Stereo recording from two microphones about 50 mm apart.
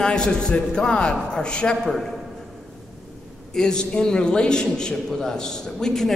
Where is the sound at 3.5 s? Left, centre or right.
Centre.